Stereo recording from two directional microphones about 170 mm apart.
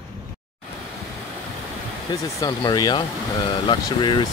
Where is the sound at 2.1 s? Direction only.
25° left (ahead or behind).